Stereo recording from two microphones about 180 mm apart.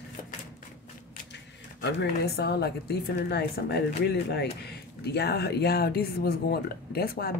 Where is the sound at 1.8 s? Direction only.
70° left (ahead or behind).